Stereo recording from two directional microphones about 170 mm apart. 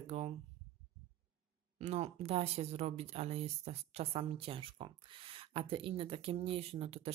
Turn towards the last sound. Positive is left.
turn(degrees=-35)  # may be behind; listen again after turning